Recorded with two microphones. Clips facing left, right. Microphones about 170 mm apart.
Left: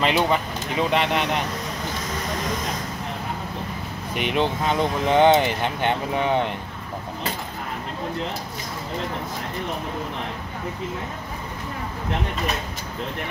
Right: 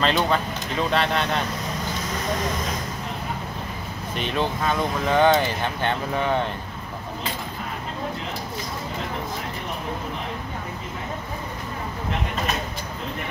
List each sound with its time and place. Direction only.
0.0 s speech: 15° left (ahead or behind)
4.1 s speech: 15° left (ahead or behind)